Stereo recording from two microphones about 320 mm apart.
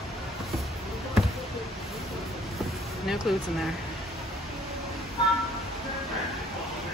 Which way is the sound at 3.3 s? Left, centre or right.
Centre.